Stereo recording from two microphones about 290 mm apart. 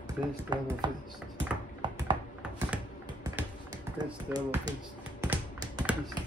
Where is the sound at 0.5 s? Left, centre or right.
Centre.